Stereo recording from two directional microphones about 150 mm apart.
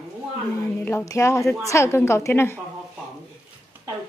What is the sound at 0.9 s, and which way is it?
A woman's voice, 15° left (ahead or behind).